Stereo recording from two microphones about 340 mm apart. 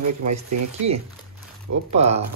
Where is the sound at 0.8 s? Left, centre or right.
Right.